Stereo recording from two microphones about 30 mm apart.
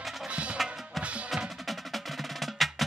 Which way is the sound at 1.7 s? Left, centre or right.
Centre.